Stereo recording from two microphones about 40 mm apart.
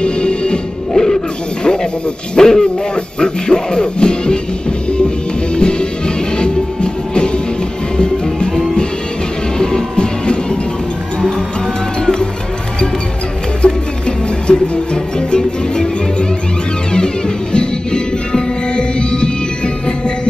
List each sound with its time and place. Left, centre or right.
0.0 s music: left
0.9 s music: centre
2.3 s speech: centre
3.2 s music: left
9.6 s music: centre
13.6 s music: left